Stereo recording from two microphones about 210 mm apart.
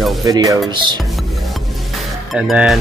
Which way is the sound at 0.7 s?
20° right (ahead or behind).